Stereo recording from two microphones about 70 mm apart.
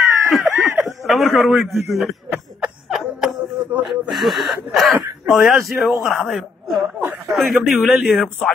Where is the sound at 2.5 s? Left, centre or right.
Centre.